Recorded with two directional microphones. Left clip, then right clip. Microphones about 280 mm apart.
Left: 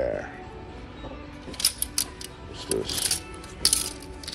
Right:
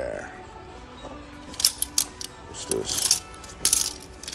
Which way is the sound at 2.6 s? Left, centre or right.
Right.